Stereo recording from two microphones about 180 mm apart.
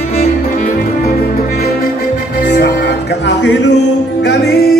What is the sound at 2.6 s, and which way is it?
Music, 60° left (ahead or behind).